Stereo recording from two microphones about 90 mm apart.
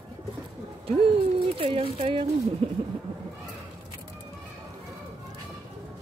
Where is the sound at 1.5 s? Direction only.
90° right.